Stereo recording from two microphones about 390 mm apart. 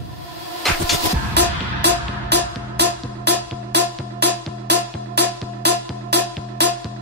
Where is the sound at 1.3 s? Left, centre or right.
Right.